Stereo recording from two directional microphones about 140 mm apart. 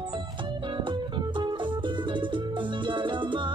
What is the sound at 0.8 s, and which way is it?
Music, 35° right (ahead or behind).